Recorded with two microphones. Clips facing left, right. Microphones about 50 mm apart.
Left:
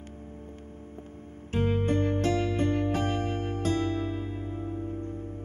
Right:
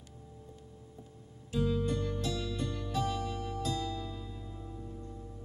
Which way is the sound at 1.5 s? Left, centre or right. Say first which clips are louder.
Left 5 dB; left.